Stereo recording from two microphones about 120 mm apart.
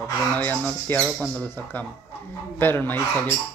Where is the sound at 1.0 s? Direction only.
5° right (ahead or behind).